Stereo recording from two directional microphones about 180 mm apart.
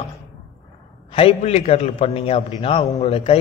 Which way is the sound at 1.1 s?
35° left (ahead or behind).